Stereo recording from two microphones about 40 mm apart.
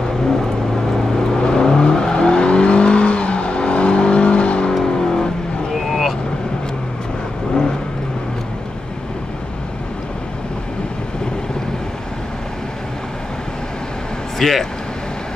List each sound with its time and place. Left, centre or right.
1.4 s vehicle: centre
4.8 s vehicle: centre
5.8 s vehicle: centre
14.4 s vehicle: centre